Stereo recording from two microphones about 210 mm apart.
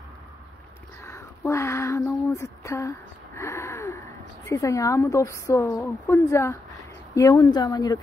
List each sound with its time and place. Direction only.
1.0 s a woman's voice: 15° left (ahead or behind)